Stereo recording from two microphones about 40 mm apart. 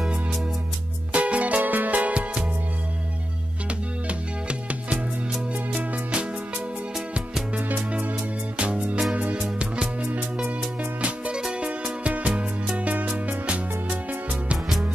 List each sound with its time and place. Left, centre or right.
1.1 s music: right
4.1 s music: right
7.5 s music: right
8.5 s music: right
9.4 s music: right
9.9 s music: right
11.3 s music: right